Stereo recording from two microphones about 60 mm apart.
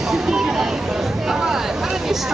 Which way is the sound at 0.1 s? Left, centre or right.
Centre.